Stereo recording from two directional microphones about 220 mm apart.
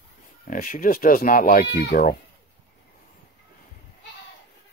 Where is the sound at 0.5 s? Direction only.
40° left (ahead or behind).